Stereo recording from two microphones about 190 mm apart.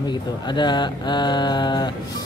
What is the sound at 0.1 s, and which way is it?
Speech, 25° left (ahead or behind).